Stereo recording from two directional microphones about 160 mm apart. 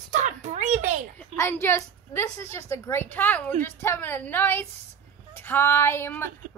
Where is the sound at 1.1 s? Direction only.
15° left (ahead or behind).